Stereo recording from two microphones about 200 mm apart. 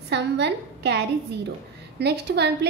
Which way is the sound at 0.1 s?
60° right (ahead or behind).